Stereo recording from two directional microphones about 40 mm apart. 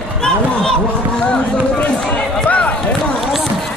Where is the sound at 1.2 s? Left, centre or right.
Left.